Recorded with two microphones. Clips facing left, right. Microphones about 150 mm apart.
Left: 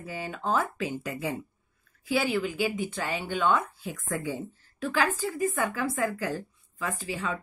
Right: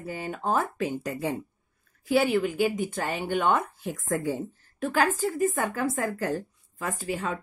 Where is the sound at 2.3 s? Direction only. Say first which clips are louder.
Right 4 dB; 50° right (ahead or behind).